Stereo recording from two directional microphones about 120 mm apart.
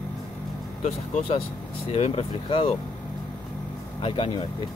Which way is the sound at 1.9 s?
55° left (ahead or behind).